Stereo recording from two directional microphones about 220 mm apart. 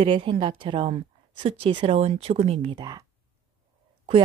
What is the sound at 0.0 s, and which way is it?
A woman's voice, 25° right (ahead or behind).